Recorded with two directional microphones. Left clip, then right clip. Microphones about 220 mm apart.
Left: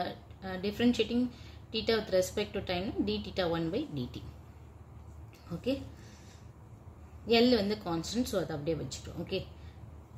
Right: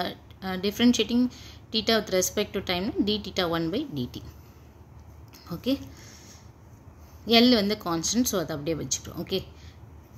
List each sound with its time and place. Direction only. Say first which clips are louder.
0.0 s speech: right 5 dB; 35° right (ahead or behind)
5.5 s speech: right 5 dB; 35° right (ahead or behind)
7.2 s speech: right 6 dB; 35° right (ahead or behind)